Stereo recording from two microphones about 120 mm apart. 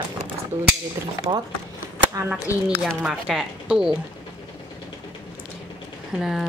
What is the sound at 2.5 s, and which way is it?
Speech, 25° left (ahead or behind).